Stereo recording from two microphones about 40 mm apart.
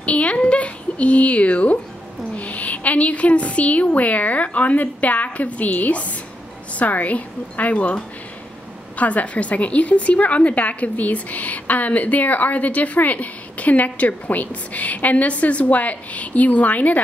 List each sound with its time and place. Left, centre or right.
0.0 s a woman's voice: left